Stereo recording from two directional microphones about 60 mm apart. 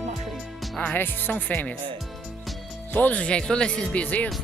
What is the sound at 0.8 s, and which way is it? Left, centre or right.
Speech, left.